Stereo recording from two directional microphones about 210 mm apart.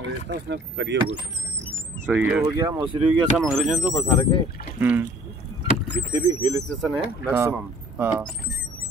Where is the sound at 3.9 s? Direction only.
20° left (ahead or behind).